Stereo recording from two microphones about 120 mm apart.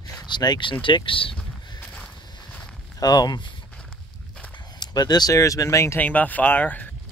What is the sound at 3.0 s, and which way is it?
Speech, 35° left (ahead or behind).